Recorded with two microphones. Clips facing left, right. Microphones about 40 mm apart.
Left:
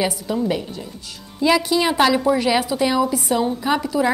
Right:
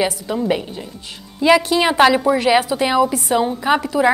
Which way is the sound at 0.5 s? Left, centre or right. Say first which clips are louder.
Right 3 dB; right.